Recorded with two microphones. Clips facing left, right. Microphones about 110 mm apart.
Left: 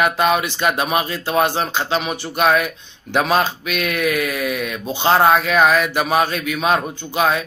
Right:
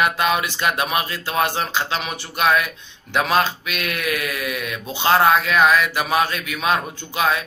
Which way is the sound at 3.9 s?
35° left (ahead or behind).